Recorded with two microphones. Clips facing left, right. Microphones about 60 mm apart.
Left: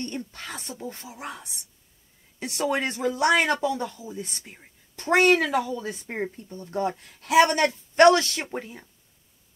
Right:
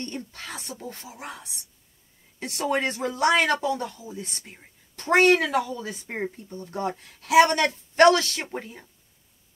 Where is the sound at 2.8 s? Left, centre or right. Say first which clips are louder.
Left 1 dB; right.